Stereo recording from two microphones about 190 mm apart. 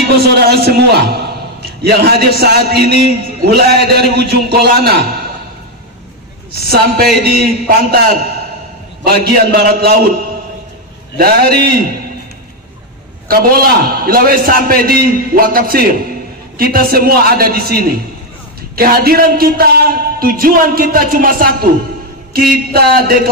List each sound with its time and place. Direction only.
0.3 s a man's voice: 55° right (ahead or behind)
6.5 s a man's voice: 55° right (ahead or behind)
9.0 s a man's voice: 55° right (ahead or behind)
11.1 s a man's voice: 55° right (ahead or behind)
13.3 s a man's voice: 50° right (ahead or behind)